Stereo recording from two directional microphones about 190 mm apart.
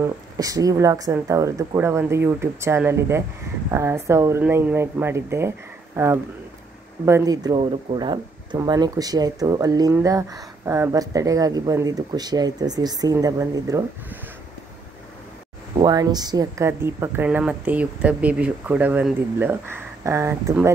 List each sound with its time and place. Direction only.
0.0 s a woman's voice: 20° right (ahead or behind)
15.8 s a woman's voice: 20° right (ahead or behind)